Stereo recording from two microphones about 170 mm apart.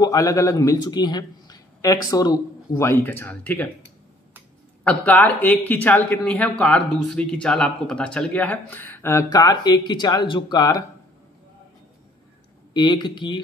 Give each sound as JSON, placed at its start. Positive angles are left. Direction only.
{"t": 0.0, "sound": "a man's voice", "side_deg": 20}
{"t": 4.8, "sound": "speech", "side_deg": 10}
{"t": 12.7, "sound": "a man's voice", "side_deg": 25}